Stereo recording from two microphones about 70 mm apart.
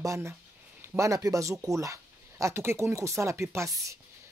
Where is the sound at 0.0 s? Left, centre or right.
Right.